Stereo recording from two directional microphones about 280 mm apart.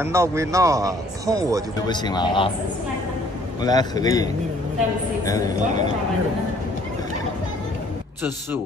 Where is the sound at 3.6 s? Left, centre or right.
Centre.